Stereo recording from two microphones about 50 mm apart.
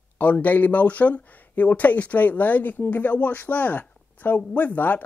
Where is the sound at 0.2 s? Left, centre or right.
Left.